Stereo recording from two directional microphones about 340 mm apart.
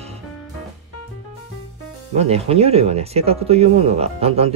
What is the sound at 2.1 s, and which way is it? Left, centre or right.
Speech, centre.